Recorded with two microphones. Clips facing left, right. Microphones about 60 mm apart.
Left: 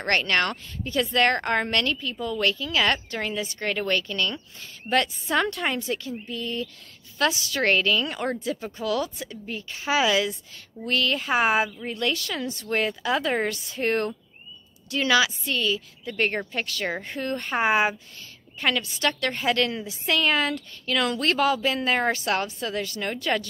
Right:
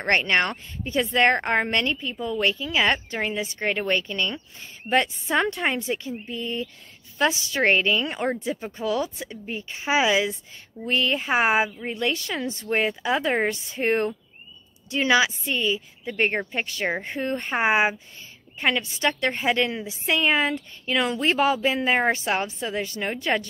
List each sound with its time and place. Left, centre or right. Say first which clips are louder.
0.0 s speech: right 2 dB; right